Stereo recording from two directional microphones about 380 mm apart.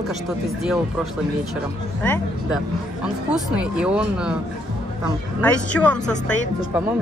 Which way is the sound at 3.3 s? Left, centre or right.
Centre.